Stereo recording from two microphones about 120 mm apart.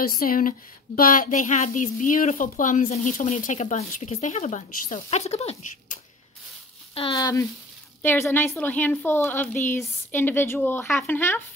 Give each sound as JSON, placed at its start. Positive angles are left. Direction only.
{"t": 1.1, "sound": "a woman's voice", "side_deg": 90}
{"t": 6.9, "sound": "a sound", "side_deg": 50}
{"t": 7.2, "sound": "a woman's voice", "side_deg": 30}
{"t": 8.0, "sound": "a woman's voice", "side_deg": 20}